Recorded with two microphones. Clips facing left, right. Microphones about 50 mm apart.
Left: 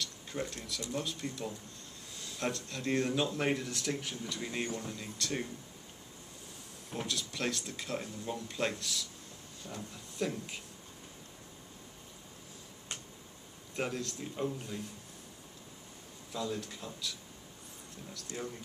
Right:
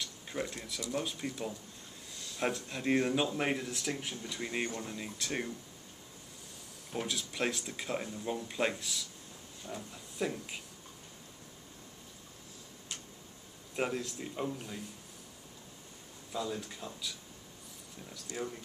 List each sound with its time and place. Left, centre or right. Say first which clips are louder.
0.0 s speech: even; centre
6.9 s speech: right 1 dB; centre
13.7 s speech: right 2 dB; centre
16.3 s speech: even; centre
18.1 s speech: right 2 dB; centre